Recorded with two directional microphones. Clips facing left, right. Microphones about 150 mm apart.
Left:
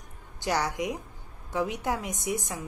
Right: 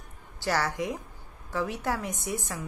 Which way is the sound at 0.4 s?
15° left (ahead or behind).